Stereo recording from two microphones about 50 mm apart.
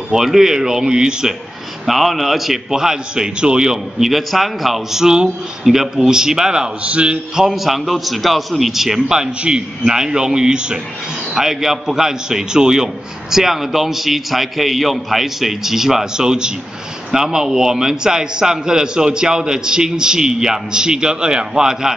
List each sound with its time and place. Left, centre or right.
0.1 s a man's voice: centre
1.9 s a man's voice: centre
5.0 s a man's voice: centre
7.4 s a man's voice: centre